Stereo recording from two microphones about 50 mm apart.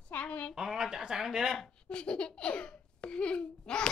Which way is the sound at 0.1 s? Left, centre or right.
Left.